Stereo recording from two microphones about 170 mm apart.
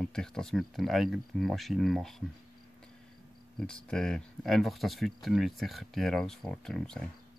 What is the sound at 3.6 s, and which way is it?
Speech, 5° left (ahead or behind).